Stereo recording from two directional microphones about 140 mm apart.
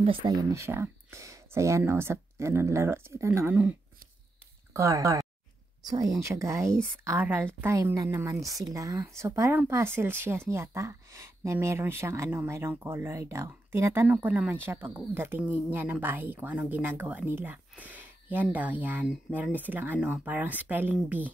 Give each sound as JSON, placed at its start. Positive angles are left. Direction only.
{"t": 0.0, "sound": "speech", "side_deg": -40}
{"t": 0.3, "sound": "a woman's voice", "side_deg": -25}
{"t": 4.7, "sound": "a woman's voice", "side_deg": -20}